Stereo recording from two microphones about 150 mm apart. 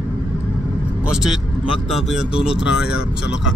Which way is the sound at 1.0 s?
5° right (ahead or behind).